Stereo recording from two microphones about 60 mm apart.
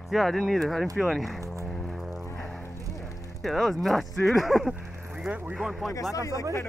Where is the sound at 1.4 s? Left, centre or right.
Right.